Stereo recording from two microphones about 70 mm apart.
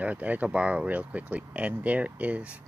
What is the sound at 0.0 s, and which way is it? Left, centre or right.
Speech, right.